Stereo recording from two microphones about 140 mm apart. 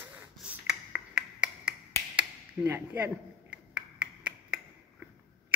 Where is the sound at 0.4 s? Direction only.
5° right (ahead or behind).